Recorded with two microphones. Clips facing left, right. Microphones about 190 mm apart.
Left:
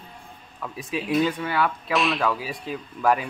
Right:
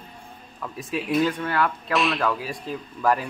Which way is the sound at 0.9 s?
Centre (ahead or behind).